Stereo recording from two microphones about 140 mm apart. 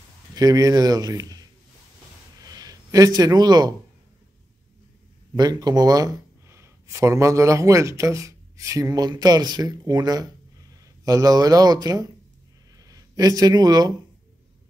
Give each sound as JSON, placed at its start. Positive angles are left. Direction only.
{"t": 0.3, "sound": "speech", "side_deg": -25}
{"t": 2.4, "sound": "a sound", "side_deg": -25}
{"t": 3.2, "sound": "speech", "side_deg": -30}
{"t": 5.3, "sound": "speech", "side_deg": -30}